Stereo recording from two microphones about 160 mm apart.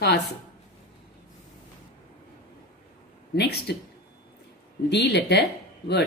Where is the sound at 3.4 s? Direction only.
90° left.